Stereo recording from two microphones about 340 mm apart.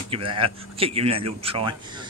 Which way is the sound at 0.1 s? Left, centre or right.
Centre.